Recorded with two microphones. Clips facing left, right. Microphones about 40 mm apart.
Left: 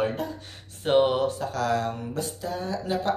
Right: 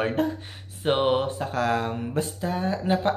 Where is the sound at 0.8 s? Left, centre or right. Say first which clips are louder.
Left 1 dB; right.